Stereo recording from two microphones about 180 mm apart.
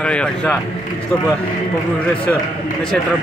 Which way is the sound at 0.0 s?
5° left (ahead or behind).